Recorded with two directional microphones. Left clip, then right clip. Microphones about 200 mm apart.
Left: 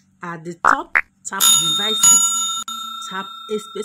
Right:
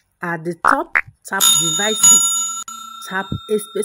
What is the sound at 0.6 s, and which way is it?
Speech, centre (ahead or behind).